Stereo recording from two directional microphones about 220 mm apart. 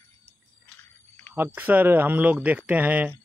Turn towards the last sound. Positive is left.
turn(degrees=-5)  # may be behind; listen again after turning